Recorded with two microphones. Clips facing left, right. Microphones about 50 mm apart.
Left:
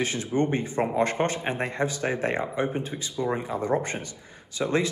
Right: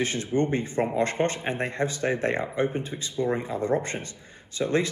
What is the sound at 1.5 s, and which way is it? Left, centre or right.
Speech, right.